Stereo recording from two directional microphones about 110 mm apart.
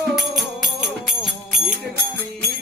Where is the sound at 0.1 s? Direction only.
Centre (ahead or behind).